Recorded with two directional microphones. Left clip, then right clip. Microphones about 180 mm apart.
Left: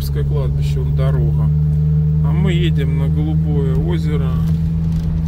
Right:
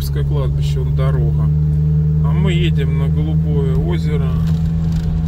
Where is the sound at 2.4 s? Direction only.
20° left (ahead or behind).